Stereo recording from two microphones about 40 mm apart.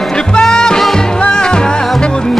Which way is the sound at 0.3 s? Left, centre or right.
Centre.